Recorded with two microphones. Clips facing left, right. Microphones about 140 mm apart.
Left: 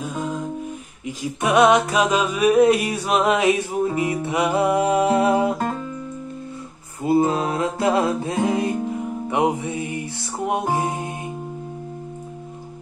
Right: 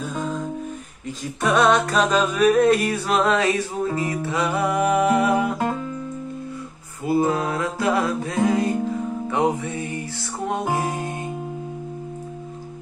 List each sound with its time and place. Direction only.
0.1 s music: centre (ahead or behind)
1.0 s music: 15° left (ahead or behind)
7.1 s music: 25° left (ahead or behind)